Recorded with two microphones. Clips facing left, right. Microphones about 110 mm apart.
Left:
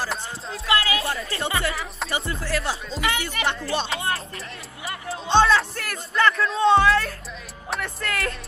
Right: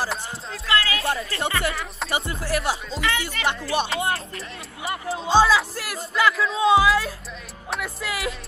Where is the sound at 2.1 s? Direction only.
20° right (ahead or behind).